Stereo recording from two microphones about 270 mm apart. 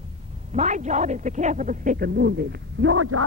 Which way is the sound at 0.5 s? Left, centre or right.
Right.